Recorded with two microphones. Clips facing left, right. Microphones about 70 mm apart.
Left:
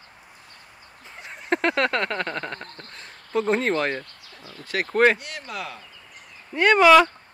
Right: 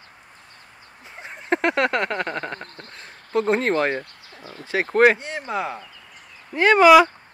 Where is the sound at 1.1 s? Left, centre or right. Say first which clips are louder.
Right 2 dB; right.